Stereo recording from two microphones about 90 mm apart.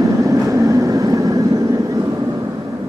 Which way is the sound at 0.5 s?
40° right (ahead or behind).